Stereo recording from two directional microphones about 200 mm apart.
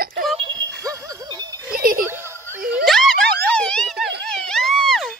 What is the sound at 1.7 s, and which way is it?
Music, 45° right (ahead or behind).